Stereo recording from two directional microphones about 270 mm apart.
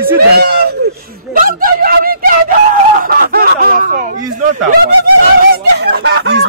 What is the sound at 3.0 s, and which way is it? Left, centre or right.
Snicker, right.